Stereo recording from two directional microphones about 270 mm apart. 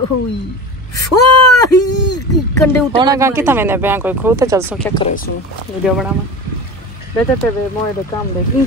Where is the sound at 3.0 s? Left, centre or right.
Centre.